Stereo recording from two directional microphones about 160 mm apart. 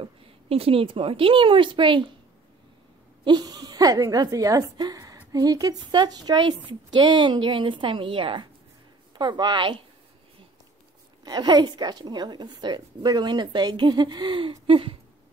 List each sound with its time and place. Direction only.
0.0 s speech: 35° right (ahead or behind)
3.3 s speech: 25° right (ahead or behind)
11.2 s speech: 25° right (ahead or behind)